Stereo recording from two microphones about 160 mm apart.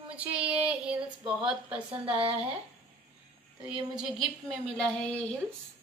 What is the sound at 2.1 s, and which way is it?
Speech, 35° right (ahead or behind).